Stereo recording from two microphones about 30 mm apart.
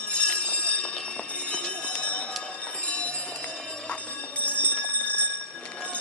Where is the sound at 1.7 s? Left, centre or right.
Left.